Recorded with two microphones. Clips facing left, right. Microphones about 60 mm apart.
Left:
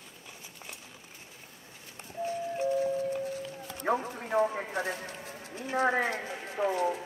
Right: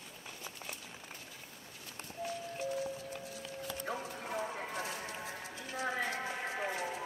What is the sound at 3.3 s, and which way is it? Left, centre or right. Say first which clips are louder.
Music: left 4 dB; left.